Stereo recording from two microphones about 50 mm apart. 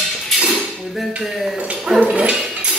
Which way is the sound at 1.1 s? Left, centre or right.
Centre.